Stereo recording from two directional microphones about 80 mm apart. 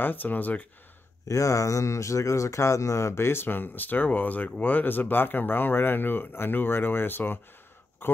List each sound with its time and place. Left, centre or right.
0.0 s speech: left
1.2 s speech: left